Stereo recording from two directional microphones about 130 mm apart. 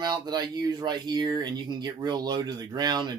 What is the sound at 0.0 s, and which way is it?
Speech, 30° right (ahead or behind).